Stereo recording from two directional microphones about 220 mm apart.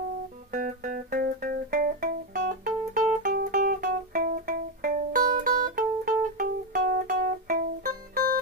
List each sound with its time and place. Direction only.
0.5 s music: 40° right (ahead or behind)